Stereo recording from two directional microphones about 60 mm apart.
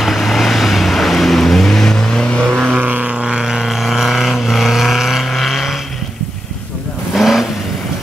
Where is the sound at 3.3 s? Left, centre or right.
Centre.